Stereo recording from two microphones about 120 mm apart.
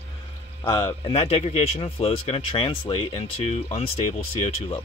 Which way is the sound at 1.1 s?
60° left (ahead or behind).